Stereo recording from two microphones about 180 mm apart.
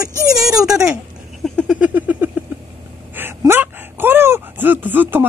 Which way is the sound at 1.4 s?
Centre (ahead or behind).